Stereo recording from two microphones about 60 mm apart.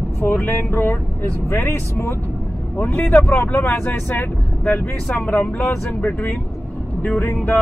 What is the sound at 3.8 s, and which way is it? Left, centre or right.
Speech, left.